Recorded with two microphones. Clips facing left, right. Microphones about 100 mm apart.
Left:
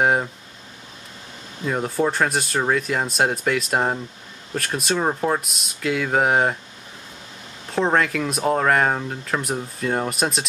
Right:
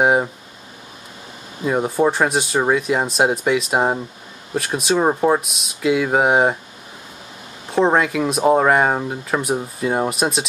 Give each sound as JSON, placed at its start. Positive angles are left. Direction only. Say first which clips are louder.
{"t": 1.6, "sound": "speech", "louder": "right 4 dB", "side_deg": -10}
{"t": 4.9, "sound": "speech", "louder": "right 6 dB", "side_deg": -15}
{"t": 5.4, "sound": "speech", "louder": "right 5 dB", "side_deg": 0}
{"t": 7.9, "sound": "speech", "louder": "right 3 dB", "side_deg": -5}